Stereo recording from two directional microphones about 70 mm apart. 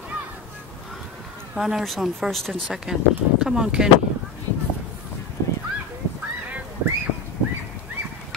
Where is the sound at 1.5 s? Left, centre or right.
Centre.